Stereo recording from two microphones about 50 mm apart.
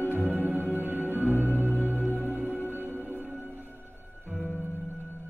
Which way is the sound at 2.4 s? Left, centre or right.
Left.